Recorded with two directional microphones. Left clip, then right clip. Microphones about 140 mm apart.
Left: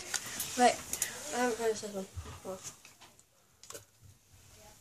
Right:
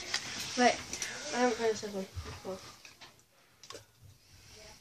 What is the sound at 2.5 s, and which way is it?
Speech, 10° left (ahead or behind).